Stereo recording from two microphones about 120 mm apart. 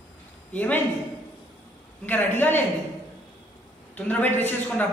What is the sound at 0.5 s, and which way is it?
Speech, 15° left (ahead or behind).